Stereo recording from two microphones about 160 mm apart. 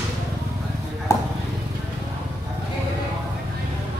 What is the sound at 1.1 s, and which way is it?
Clip-clop, 20° left (ahead or behind).